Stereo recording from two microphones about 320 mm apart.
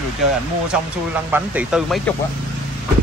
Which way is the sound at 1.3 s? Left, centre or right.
Centre.